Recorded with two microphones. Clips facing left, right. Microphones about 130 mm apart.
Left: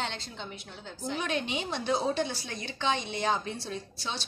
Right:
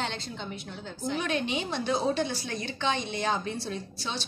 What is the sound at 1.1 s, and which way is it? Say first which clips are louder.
Speech: right 2 dB; 15° left (ahead or behind).